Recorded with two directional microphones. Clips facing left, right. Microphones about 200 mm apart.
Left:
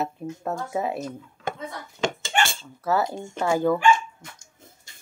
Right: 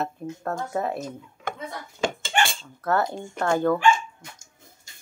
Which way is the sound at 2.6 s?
5° left (ahead or behind).